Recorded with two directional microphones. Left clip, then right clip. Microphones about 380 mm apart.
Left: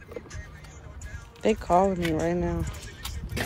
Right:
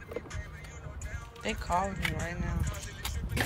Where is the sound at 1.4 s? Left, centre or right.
Centre.